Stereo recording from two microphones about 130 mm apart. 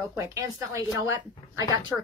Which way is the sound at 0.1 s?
20° right (ahead or behind).